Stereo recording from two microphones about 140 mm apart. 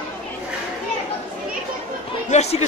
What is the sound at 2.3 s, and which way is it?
Chatter, 50° left (ahead or behind).